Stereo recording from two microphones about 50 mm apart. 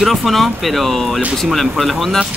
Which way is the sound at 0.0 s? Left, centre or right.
Centre.